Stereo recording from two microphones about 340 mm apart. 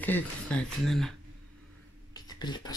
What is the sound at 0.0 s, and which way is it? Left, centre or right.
Speech, centre.